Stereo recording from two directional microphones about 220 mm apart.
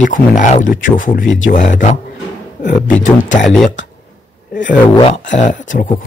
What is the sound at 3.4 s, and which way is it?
Speech, centre (ahead or behind).